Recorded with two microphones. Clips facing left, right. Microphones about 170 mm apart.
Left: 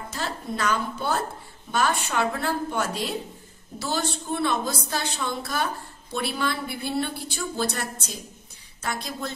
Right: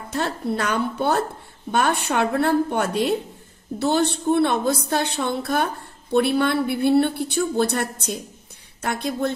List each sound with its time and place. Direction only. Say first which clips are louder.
0.1 s a woman's voice: right 8 dB; 60° right (ahead or behind)